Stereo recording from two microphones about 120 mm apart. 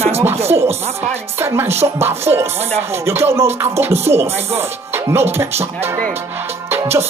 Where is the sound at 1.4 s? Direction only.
20° right (ahead or behind).